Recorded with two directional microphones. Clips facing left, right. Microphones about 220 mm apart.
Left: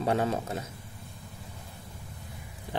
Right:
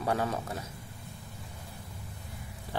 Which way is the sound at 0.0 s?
25° left (ahead or behind).